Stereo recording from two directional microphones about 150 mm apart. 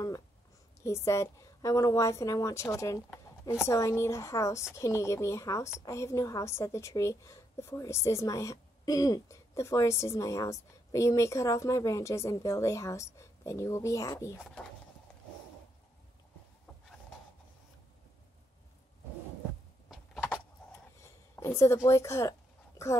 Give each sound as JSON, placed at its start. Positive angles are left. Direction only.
{"t": 0.8, "sound": "a woman's voice", "side_deg": 20}
{"t": 21.0, "sound": "a woman's voice", "side_deg": 20}